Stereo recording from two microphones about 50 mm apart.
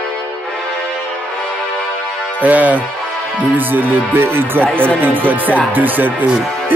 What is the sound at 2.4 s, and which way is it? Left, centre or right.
Music, right.